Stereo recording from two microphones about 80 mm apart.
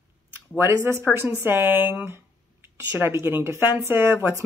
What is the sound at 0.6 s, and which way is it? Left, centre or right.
Speech, right.